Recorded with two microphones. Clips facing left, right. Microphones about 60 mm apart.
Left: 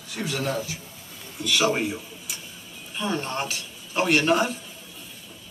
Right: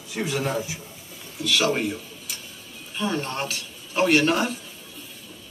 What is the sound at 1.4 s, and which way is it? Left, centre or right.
A man's voice, centre.